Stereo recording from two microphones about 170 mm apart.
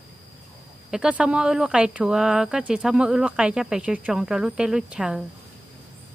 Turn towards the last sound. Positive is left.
turn(degrees=-5)  # may be behind; listen again after turning